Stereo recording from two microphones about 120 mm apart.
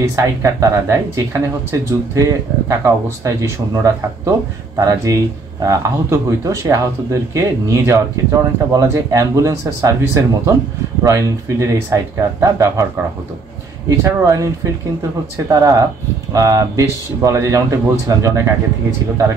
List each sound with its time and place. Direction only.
0.1 s speech: 25° right (ahead or behind)
13.8 s speech: 25° right (ahead or behind)